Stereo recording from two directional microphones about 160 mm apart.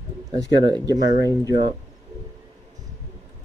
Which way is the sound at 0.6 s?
25° right (ahead or behind).